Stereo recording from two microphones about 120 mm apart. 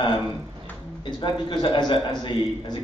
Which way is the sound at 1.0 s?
40° left (ahead or behind).